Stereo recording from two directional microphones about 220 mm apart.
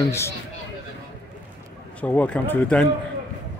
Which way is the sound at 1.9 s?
5° left (ahead or behind).